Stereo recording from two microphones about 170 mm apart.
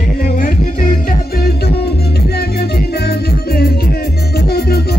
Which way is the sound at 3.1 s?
65° left (ahead or behind).